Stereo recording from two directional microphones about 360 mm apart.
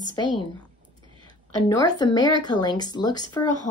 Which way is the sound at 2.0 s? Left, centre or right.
Centre.